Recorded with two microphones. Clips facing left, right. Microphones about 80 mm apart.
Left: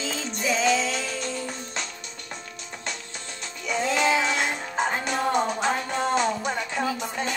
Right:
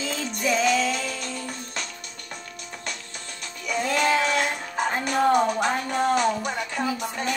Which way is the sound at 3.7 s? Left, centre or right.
Left.